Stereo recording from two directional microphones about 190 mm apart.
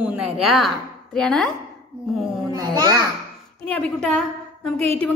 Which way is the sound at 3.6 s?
5° left (ahead or behind).